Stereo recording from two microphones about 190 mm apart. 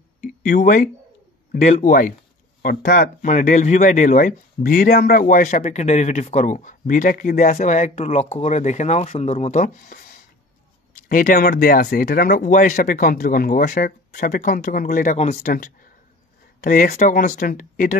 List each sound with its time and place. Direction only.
0.2 s a sound: 40° left (ahead or behind)
1.5 s speech: 45° left (ahead or behind)
11.1 s speech: 50° left (ahead or behind)
15.4 s speech: 50° left (ahead or behind)